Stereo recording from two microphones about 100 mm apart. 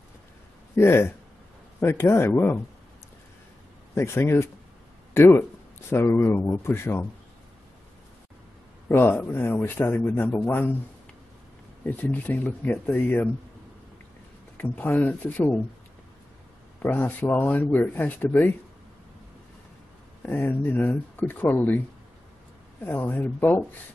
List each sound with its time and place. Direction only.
0.7 s speech: 25° left (ahead or behind)
3.9 s speech: 25° left (ahead or behind)
8.8 s speech: 20° left (ahead or behind)
11.8 s speech: 15° left (ahead or behind)
14.6 s speech: 20° left (ahead or behind)
16.8 s speech: 20° left (ahead or behind)
20.2 s speech: 20° left (ahead or behind)